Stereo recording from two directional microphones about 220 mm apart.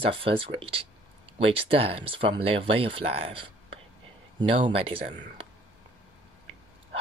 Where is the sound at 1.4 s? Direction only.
25° right (ahead or behind).